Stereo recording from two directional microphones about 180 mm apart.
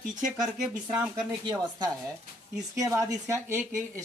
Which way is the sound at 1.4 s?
20° right (ahead or behind).